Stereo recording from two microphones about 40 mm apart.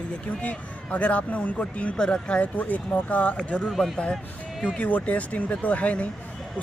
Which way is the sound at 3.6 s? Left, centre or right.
Centre.